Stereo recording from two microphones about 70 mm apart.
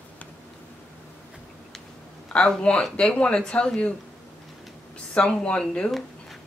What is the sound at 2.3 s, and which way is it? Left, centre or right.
Speech, centre.